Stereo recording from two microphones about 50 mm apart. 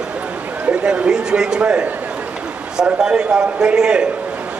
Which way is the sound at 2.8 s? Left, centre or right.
Centre.